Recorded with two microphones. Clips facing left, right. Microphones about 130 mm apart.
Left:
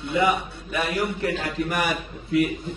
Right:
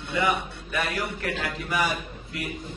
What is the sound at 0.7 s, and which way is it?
Speech, 20° left (ahead or behind).